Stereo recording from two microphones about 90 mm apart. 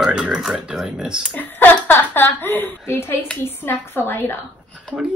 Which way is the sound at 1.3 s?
20° left (ahead or behind).